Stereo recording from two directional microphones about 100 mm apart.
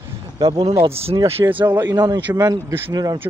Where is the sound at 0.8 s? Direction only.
80° right.